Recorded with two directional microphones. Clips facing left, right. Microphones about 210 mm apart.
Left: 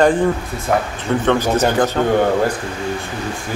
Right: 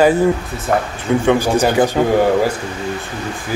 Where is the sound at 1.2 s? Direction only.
10° right (ahead or behind).